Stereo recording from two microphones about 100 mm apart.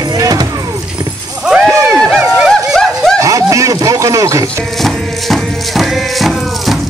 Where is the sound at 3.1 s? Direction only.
35° right (ahead or behind).